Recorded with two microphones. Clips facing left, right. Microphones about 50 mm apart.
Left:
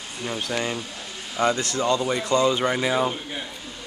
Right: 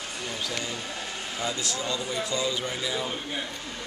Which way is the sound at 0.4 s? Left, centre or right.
Left.